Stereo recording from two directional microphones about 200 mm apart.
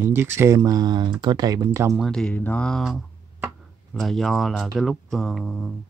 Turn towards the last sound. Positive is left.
turn(degrees=0)  # may be behind; listen again after turning